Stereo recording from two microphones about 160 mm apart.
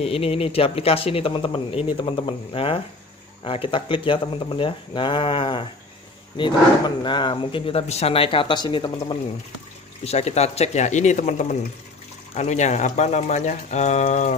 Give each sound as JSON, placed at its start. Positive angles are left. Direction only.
{"t": 0.0, "sound": "speech", "side_deg": 40}
{"t": 10.0, "sound": "speech", "side_deg": 40}